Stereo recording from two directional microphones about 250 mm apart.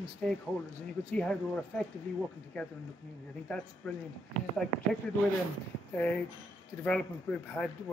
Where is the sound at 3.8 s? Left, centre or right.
Centre.